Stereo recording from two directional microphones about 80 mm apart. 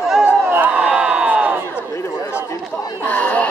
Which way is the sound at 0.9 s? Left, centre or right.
Centre.